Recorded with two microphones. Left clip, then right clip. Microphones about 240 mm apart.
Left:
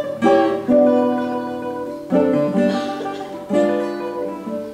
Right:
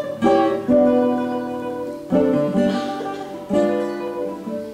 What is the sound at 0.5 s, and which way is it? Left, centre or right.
Music, centre.